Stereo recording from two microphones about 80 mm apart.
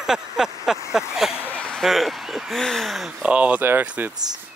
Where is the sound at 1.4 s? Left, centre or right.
Centre.